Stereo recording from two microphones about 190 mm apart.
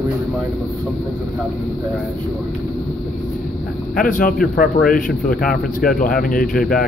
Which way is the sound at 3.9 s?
45° left (ahead or behind).